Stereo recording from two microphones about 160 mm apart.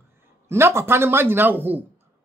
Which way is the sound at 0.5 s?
15° right (ahead or behind).